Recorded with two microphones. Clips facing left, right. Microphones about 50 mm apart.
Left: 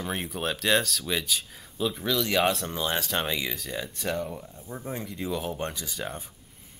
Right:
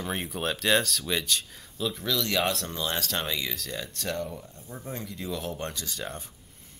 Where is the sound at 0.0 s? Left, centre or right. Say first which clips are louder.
Even; centre.